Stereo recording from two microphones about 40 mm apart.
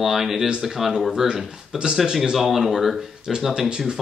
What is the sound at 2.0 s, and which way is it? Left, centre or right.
Speech, centre.